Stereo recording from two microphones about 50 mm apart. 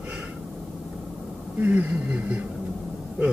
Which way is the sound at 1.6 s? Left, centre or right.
Right.